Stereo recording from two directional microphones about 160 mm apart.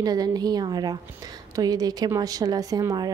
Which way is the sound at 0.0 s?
25° right (ahead or behind).